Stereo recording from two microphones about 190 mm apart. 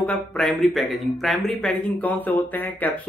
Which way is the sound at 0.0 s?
5° left (ahead or behind).